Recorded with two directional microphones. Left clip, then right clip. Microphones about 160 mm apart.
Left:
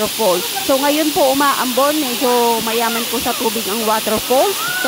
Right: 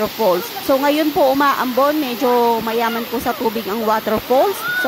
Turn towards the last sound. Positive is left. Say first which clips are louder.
# even
turn(degrees=0)  # may be behind; listen again after turning